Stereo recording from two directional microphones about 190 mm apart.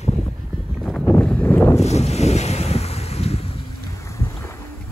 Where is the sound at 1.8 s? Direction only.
35° left (ahead or behind).